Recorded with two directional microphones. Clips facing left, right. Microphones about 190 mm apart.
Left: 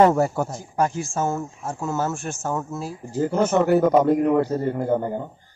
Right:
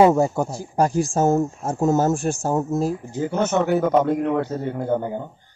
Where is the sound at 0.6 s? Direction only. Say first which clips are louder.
Right 6 dB; 35° right (ahead or behind).